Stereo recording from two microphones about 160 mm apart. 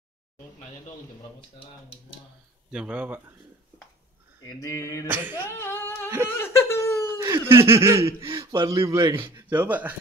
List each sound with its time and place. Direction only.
1.6 s speech: 35° left (ahead or behind)
2.7 s speech: 5° right (ahead or behind)
4.6 s mantra: 20° left (ahead or behind)
5.0 s speech: 10° right (ahead or behind)
5.5 s singing: 15° left (ahead or behind)
6.3 s laughter: 15° left (ahead or behind)
7.1 s laughter: 25° right (ahead or behind)
7.4 s speech: 15° right (ahead or behind)